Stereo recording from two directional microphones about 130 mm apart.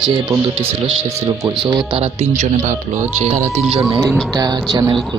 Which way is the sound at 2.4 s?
65° right (ahead or behind).